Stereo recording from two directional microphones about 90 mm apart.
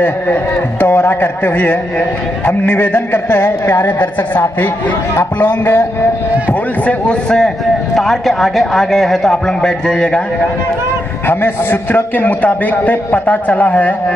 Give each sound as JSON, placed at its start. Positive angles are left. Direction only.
{"t": 0.0, "sound": "a man's voice", "side_deg": 20}
{"t": 11.2, "sound": "a man's voice", "side_deg": 20}